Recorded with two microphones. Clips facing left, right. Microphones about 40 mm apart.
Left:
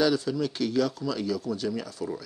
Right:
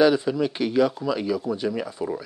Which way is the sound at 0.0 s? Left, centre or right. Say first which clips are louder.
Right 6 dB; right.